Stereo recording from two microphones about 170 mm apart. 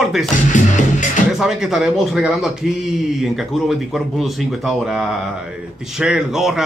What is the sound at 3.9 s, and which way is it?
Speech, centre (ahead or behind).